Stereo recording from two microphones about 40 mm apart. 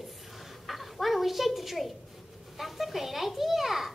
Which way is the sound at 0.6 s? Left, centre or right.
Centre.